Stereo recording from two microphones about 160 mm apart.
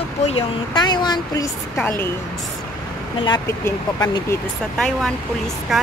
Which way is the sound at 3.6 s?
20° left (ahead or behind).